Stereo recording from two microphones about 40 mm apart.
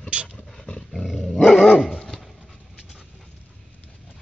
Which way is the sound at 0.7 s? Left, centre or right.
Centre.